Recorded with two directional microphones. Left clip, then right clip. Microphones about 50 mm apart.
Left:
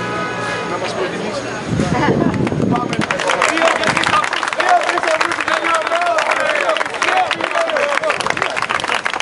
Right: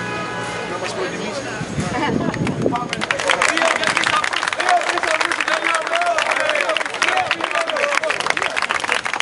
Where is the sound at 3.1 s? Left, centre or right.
Right.